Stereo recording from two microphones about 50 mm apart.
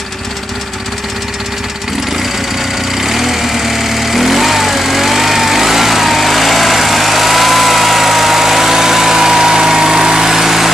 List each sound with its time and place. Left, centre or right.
3.0 s lawn mower: centre